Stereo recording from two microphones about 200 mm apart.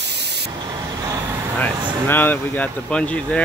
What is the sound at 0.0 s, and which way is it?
Spray, 55° right (ahead or behind).